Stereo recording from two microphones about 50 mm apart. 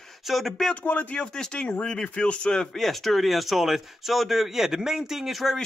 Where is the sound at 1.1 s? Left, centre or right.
Centre.